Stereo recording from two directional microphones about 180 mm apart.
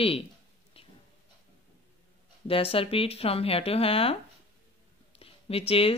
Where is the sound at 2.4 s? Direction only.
30° left (ahead or behind).